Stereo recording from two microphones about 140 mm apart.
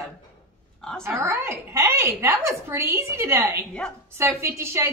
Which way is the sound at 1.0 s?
15° right (ahead or behind).